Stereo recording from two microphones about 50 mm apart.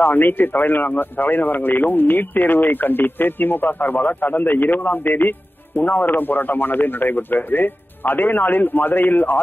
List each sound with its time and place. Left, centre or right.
0.0 s speech: left